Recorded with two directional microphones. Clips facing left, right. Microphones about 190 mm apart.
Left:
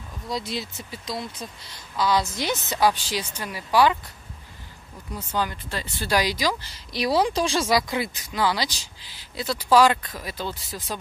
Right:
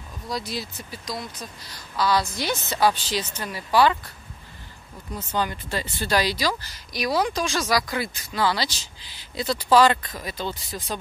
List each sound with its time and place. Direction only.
0.3 s a woman's voice: 25° left (ahead or behind)
5.3 s speech: centre (ahead or behind)
6.0 s a woman's voice: 15° left (ahead or behind)
6.7 s speech: 30° left (ahead or behind); by 11.0 s 5° left (ahead or behind)